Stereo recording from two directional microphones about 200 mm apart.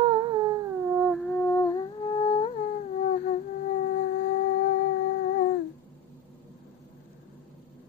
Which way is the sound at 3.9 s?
45° left (ahead or behind).